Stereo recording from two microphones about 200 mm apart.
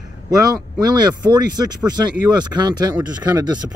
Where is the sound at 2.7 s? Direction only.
20° right (ahead or behind).